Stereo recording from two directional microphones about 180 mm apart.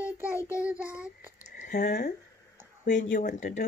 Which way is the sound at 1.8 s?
60° left (ahead or behind).